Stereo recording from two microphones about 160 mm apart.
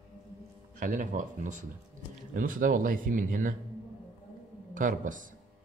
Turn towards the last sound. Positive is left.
turn(degrees=-55)  # may be behind; listen again after turning